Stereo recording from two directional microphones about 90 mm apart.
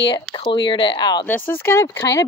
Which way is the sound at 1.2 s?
20° left (ahead or behind).